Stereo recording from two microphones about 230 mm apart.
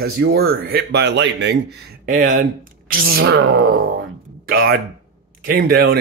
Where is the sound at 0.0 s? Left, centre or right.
Right.